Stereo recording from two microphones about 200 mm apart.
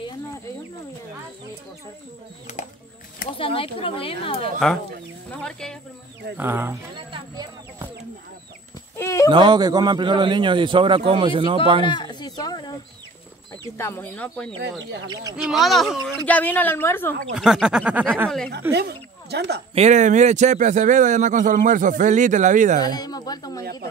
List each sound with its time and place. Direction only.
2.5 s speech: 35° left (ahead or behind)
4.6 s speech: centre (ahead or behind)
6.3 s speech: 10° right (ahead or behind)
8.9 s a sound: 15° left (ahead or behind)
9.3 s a man's voice: 20° right (ahead or behind)
11.8 s a sound: 25° left (ahead or behind)
13.7 s a woman's voice: 10° left (ahead or behind)
15.5 s a woman's voice: centre (ahead or behind)
17.4 s speech: 5° right (ahead or behind)
18.7 s speech: 55° right (ahead or behind)
19.7 s a man's voice: 35° right (ahead or behind)
22.8 s speech: 20° left (ahead or behind)
23.6 s speech: 50° right (ahead or behind)